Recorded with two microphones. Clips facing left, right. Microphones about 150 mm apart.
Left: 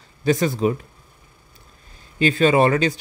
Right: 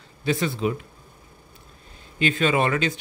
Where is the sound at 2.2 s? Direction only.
35° left (ahead or behind).